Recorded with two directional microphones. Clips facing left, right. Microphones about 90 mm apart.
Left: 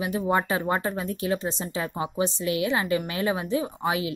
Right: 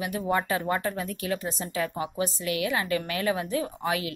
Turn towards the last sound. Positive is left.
turn(degrees=20)  # may be behind; listen again after turning